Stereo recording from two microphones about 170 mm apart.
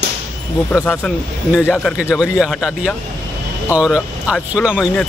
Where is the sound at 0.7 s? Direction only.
10° left (ahead or behind).